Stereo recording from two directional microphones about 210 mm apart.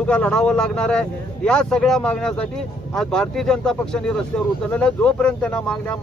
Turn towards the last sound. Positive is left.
turn(degrees=5)  # may be behind; listen again after turning